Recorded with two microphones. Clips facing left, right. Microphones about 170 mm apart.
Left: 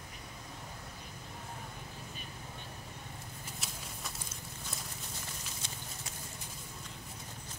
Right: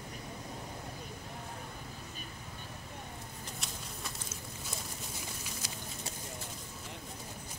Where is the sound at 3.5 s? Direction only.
Centre (ahead or behind).